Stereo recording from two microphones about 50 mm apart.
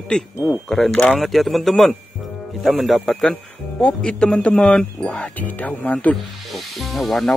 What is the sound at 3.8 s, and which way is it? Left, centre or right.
Speech, centre.